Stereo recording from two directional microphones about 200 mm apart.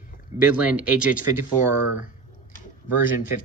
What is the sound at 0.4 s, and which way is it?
Speech, 5° right (ahead or behind).